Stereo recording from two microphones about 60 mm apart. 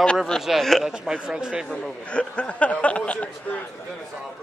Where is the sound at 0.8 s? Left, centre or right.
Centre.